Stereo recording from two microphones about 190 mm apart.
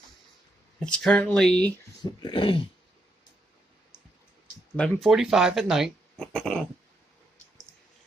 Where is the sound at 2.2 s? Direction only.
25° left (ahead or behind).